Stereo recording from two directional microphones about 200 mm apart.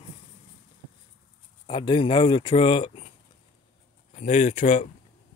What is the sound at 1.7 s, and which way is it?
Speech, 25° left (ahead or behind).